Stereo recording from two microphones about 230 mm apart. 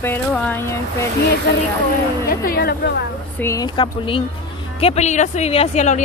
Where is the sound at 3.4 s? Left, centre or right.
Centre.